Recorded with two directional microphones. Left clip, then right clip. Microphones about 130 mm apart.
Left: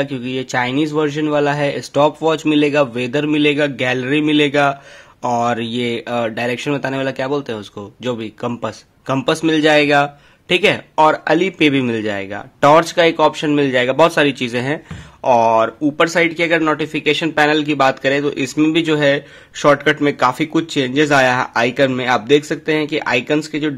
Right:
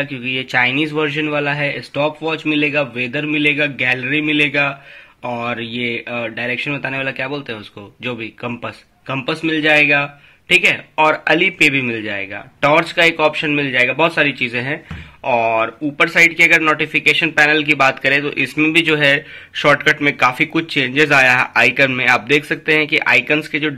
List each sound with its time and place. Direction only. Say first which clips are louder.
0.2 s speech: right 3 dB; 45° left (ahead or behind); by 4.7 s 65° left (ahead or behind)
5.2 s speech: left 5 dB; 80° left; by 8.7 s 50° left (ahead or behind)
9.0 s a man's voice: left 4 dB; 80° left; by 11.7 s 40° left (ahead or behind)
11.7 s speech: left 1 dB; 70° left (ahead or behind); by 23.7 s 30° left (ahead or behind)